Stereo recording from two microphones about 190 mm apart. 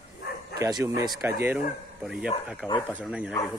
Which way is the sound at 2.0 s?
5° right (ahead or behind).